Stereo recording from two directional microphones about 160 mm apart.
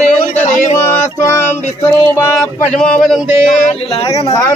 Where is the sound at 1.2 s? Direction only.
15° left (ahead or behind).